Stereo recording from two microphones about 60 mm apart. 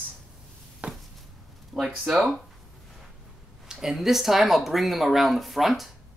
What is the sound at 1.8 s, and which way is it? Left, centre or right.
Speech, centre.